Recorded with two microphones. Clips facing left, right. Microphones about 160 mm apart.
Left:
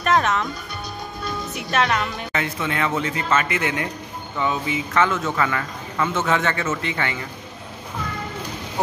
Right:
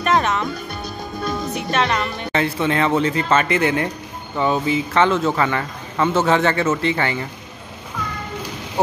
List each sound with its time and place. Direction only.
0.0 s music: centre (ahead or behind)
1.5 s speech: centre (ahead or behind)
2.3 s a man's voice: 30° right (ahead or behind)